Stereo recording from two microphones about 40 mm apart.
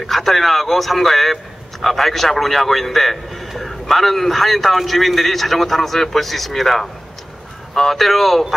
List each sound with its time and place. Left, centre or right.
0.0 s a man's voice: centre